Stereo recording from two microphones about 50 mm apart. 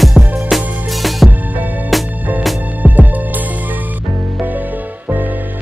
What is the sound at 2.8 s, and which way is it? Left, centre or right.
Music, right.